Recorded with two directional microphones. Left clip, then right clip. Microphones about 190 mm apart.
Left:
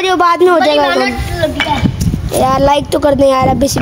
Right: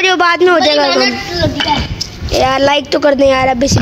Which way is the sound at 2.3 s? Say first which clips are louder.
Even; 10° left (ahead or behind).